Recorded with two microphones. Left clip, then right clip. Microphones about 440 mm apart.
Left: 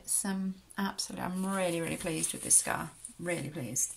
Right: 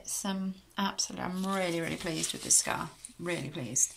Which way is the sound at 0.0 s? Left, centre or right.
Centre.